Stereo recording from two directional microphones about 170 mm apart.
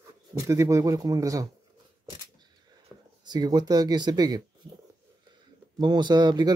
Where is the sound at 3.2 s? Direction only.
25° right (ahead or behind).